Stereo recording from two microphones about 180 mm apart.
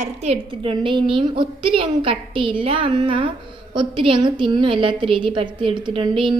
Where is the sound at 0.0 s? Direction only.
35° right (ahead or behind).